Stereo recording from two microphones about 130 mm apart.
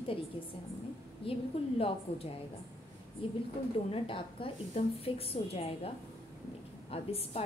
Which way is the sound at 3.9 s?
45° left (ahead or behind).